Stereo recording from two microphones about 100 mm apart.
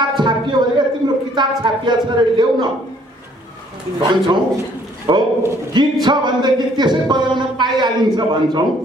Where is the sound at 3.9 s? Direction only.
50° right (ahead or behind).